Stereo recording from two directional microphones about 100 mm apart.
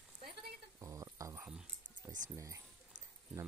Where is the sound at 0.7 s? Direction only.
35° right (ahead or behind).